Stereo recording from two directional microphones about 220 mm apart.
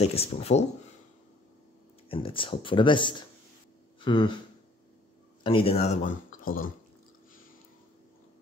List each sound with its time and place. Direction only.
0.0 s speech: 30° left (ahead or behind)
2.0 s speech: 25° left (ahead or behind)
5.4 s speech: 25° left (ahead or behind); by 6.7 s 40° left (ahead or behind)